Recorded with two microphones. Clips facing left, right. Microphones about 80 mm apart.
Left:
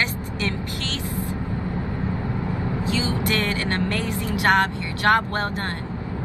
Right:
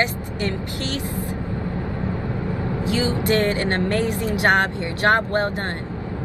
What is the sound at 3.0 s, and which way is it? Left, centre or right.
Speech, right.